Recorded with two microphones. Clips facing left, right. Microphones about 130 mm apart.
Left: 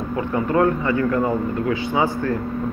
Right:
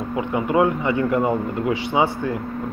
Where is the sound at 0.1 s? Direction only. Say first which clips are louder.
Even; 15° right (ahead or behind).